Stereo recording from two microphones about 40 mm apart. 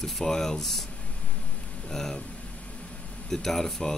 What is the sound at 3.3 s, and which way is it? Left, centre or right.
Speech, centre.